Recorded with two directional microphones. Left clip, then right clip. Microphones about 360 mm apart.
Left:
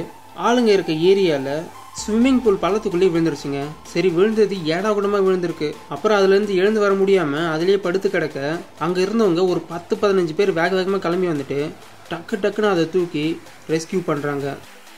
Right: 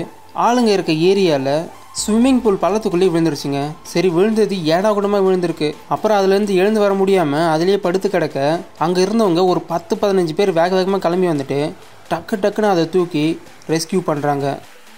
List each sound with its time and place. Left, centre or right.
0.4 s speech: centre